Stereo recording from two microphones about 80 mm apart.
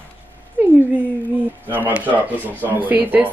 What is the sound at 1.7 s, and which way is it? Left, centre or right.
Speech, right.